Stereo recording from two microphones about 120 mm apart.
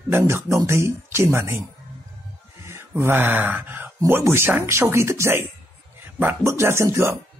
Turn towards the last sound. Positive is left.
turn(degrees=-25)  # may be behind; listen again after turning